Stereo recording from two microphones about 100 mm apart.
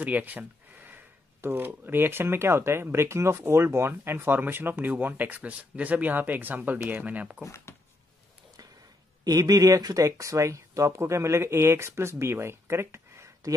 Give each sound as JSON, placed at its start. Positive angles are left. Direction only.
{"t": 0.0, "sound": "speech", "side_deg": -15}
{"t": 7.4, "sound": "speech", "side_deg": 30}
{"t": 9.2, "sound": "speech", "side_deg": -40}